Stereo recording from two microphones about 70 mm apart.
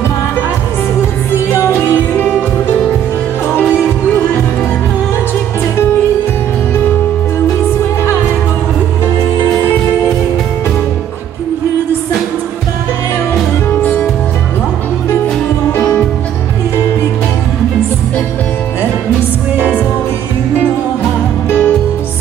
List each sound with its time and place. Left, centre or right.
1.5 s music: left
15.8 s music: centre
21.5 s music: left